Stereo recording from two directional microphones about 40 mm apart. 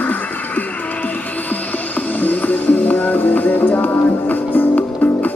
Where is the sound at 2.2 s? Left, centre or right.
Left.